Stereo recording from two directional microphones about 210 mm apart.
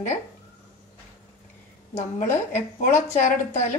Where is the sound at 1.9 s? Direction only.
35° left (ahead or behind).